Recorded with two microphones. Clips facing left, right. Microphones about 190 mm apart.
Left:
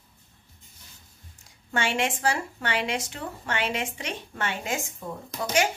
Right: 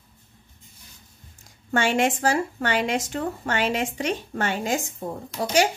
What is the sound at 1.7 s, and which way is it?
A woman's voice, 45° right (ahead or behind).